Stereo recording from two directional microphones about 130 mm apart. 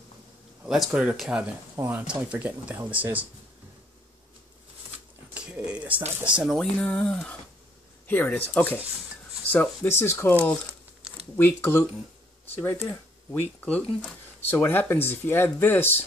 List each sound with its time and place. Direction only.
0.7 s speech: 5° right (ahead or behind)
1.8 s speech: 15° right (ahead or behind)
5.3 s a sound: 10° right (ahead or behind)
6.2 s speech: 5° right (ahead or behind); by 10.3 s 15° left (ahead or behind)
11.3 s speech: 20° left (ahead or behind)